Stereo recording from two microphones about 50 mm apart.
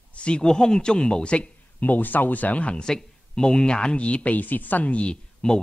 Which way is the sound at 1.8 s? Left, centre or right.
Left.